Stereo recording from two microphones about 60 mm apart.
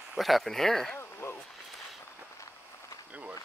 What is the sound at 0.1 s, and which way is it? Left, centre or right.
Speech, centre.